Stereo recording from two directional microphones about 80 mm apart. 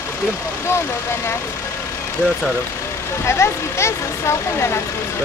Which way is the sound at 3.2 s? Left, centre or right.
Left.